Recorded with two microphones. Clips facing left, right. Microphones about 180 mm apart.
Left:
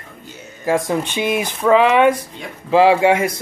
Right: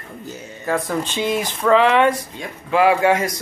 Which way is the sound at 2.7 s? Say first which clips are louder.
Left 3 dB; 25° left (ahead or behind).